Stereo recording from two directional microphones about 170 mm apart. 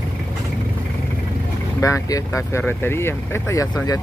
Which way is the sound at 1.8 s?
20° left (ahead or behind).